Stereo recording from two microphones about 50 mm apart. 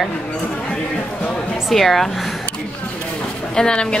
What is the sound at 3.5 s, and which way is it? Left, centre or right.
Speech, centre.